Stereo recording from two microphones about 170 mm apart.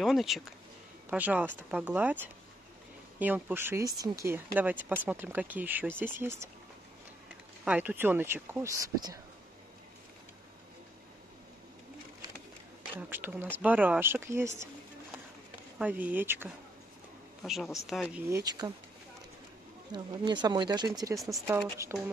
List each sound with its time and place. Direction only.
0.0 s speech: centre (ahead or behind)
3.2 s speech: 10° right (ahead or behind)
7.6 s speech: 10° right (ahead or behind)
12.9 s speech: 10° right (ahead or behind)
15.8 s speech: 10° right (ahead or behind)
18.4 s speech: 25° right (ahead or behind)
19.9 s speech: 25° right (ahead or behind)